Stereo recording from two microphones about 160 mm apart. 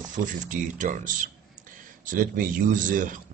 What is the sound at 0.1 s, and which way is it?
Speech, 55° right (ahead or behind).